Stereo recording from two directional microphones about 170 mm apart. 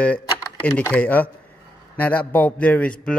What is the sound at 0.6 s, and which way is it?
Speech, 10° left (ahead or behind).